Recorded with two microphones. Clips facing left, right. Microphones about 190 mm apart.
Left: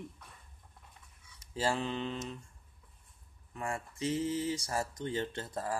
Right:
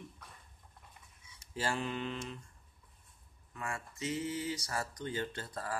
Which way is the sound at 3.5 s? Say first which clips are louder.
Left 4 dB; 30° left (ahead or behind).